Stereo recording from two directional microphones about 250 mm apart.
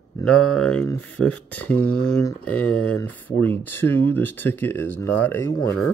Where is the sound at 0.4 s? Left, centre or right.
Left.